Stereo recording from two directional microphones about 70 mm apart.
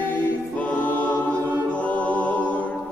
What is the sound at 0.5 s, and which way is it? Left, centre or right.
Choir, left.